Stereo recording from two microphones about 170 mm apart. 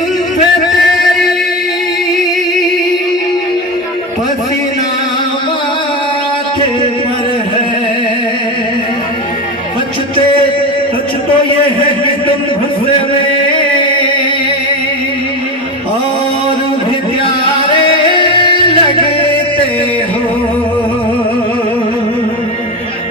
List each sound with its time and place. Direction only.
18.1 s music: 30° left (ahead or behind)